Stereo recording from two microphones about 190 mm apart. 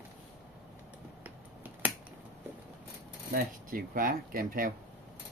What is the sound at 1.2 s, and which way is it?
Finger snapping, 10° right (ahead or behind).